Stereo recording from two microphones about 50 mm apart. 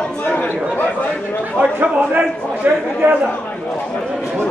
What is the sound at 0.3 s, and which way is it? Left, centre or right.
Chatter, left.